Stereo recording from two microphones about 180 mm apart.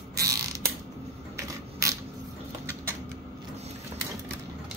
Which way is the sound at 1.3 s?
15° right (ahead or behind).